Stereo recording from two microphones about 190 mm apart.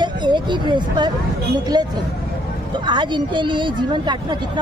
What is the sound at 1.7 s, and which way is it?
A woman's voice, 20° right (ahead or behind).